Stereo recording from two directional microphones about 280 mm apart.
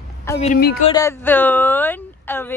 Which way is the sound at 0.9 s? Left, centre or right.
Centre.